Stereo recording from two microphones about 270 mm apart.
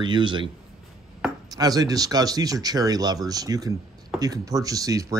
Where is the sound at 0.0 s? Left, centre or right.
Centre.